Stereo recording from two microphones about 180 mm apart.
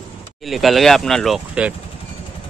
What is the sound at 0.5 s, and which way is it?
Speech, centre (ahead or behind).